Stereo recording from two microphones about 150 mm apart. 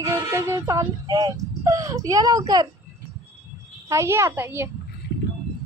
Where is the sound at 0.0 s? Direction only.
20° right (ahead or behind).